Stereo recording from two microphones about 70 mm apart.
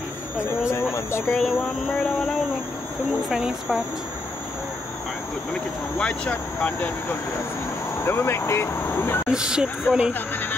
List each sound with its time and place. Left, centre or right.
0.5 s speech: left
3.3 s speech: centre
5.5 s speech: centre
8.0 s speech: left
9.3 s speech: centre
10.1 s speech: left